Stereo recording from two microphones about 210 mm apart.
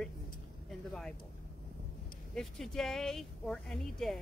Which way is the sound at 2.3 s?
Centre (ahead or behind).